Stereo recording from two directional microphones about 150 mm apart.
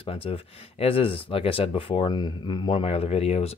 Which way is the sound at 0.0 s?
40° left (ahead or behind).